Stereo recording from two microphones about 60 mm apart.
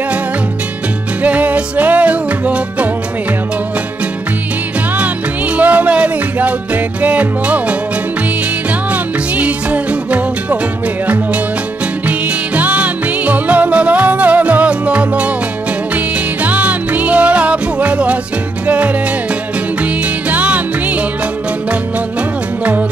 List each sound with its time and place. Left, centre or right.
1.2 s music: right
5.6 s music: right
8.9 s music: right
12.1 s music: right
16.4 s music: right